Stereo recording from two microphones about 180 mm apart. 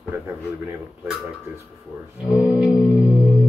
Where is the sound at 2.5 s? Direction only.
20° left (ahead or behind).